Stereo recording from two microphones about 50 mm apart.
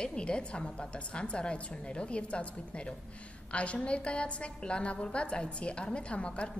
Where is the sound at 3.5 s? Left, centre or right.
Left.